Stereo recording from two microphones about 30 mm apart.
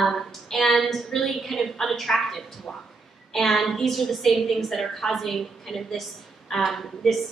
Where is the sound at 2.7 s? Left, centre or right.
Centre.